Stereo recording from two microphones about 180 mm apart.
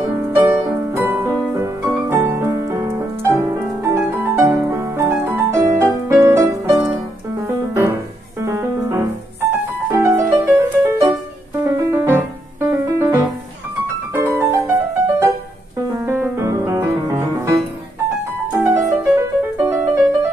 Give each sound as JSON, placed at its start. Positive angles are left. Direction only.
{"t": 0.3, "sound": "music", "side_deg": -10}
{"t": 18.5, "sound": "music", "side_deg": -15}